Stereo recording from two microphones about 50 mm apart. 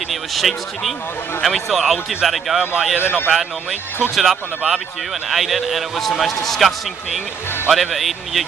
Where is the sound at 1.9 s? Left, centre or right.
Centre.